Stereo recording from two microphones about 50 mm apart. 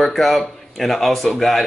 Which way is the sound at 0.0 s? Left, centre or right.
Centre.